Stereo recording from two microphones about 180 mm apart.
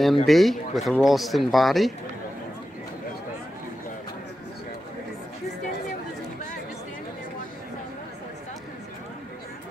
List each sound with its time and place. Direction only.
0.0 s speech: centre (ahead or behind)